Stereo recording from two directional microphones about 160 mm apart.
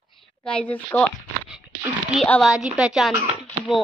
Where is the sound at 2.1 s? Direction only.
Centre (ahead or behind).